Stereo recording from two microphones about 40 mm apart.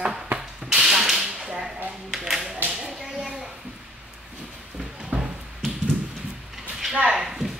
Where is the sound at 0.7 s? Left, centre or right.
Centre.